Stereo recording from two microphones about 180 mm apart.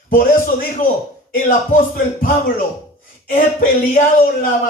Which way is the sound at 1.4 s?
50° left (ahead or behind).